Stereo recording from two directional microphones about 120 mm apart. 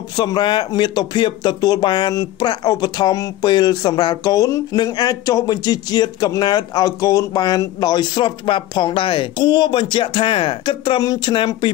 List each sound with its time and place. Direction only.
0.2 s speech: 40° left (ahead or behind)